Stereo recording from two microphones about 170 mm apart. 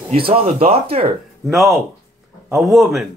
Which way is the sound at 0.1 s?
30° right (ahead or behind).